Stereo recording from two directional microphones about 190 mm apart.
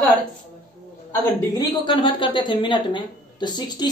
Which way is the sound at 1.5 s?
25° left (ahead or behind).